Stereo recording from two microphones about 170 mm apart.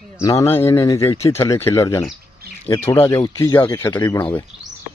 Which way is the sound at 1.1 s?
40° left (ahead or behind).